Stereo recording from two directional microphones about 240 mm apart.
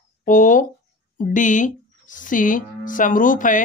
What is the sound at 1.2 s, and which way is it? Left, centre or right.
Speech, left.